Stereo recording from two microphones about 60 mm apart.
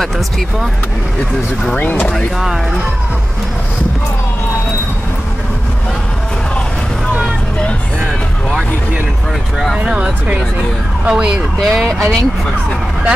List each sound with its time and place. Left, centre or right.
1.8 s speech: left
9.8 s speech: centre
11.6 s speech: centre